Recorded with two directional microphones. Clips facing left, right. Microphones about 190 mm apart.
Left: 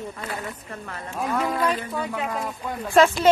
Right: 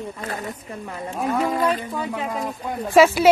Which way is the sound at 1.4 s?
45° right (ahead or behind).